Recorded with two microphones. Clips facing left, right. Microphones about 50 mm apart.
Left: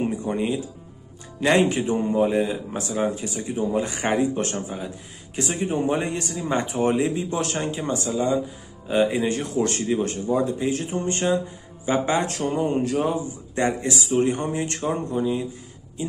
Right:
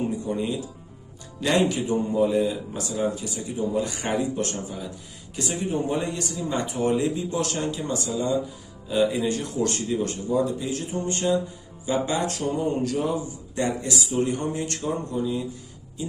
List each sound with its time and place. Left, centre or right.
0.2 s speech: left